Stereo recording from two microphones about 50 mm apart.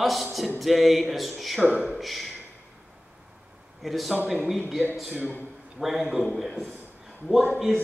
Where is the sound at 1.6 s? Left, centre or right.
Right.